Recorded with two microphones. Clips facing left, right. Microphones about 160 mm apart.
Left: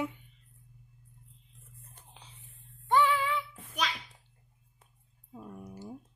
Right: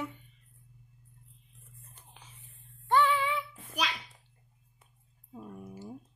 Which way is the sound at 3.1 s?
Centre (ahead or behind).